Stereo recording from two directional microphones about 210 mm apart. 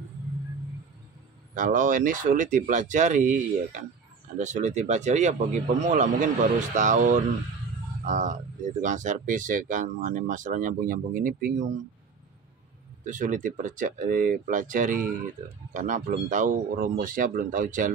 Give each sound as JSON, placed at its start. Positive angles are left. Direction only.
{"t": 1.5, "sound": "speech", "side_deg": -40}
{"t": 13.0, "sound": "speech", "side_deg": -35}